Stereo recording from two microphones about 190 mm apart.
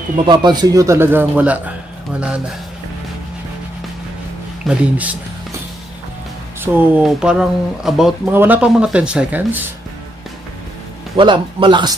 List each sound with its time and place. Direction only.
0.3 s speech: 25° right (ahead or behind); by 2.4 s 5° right (ahead or behind)
4.6 s speech: 10° right (ahead or behind)
6.6 s speech: 10° right (ahead or behind)
11.1 s speech: 25° right (ahead or behind)